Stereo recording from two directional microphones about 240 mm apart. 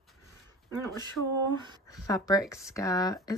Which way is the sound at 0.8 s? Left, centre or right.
Centre.